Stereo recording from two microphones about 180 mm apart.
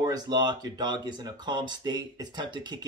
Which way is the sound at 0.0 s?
20° right (ahead or behind).